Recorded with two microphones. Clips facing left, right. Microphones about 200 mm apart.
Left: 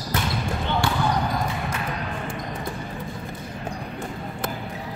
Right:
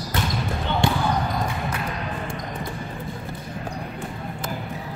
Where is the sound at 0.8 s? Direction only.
20° right (ahead or behind).